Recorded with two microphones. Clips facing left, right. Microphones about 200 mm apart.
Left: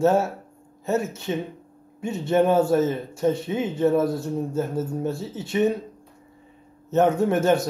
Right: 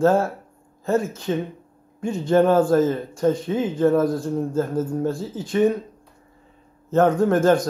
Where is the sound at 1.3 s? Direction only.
10° left (ahead or behind).